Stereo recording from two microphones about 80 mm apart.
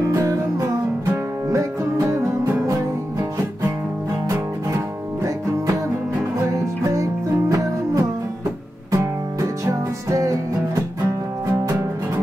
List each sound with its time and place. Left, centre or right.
0.1 s music: right
4.3 s music: right